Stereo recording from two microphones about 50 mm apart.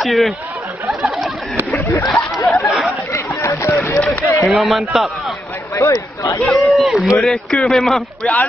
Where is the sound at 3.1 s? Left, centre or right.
Left.